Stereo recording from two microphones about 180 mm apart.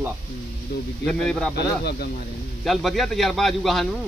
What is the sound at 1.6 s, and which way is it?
Speech, 65° left (ahead or behind).